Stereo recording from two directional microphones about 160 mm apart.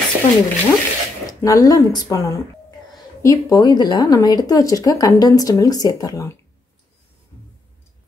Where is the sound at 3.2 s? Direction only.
25° left (ahead or behind).